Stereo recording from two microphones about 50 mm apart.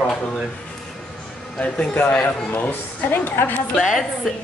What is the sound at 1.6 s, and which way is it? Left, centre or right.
A woman's voice, left.